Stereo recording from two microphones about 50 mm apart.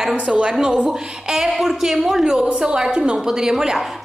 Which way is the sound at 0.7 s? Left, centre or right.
Centre.